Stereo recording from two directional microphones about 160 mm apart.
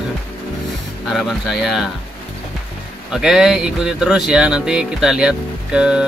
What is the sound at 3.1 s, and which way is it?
Speech, 5° right (ahead or behind).